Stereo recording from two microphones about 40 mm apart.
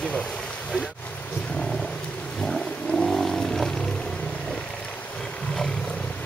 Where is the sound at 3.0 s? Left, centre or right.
Centre.